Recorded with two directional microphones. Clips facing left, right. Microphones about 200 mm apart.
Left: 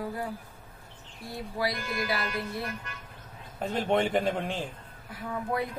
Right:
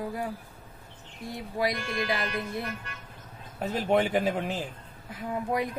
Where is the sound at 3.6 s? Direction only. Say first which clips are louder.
Right 1 dB; 5° right (ahead or behind).